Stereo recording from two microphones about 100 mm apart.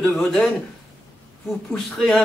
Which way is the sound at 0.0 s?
10° left (ahead or behind).